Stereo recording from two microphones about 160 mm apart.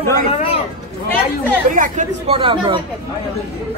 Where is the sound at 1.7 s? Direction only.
55° right (ahead or behind).